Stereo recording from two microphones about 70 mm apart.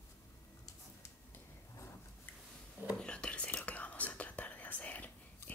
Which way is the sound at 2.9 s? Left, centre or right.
Centre.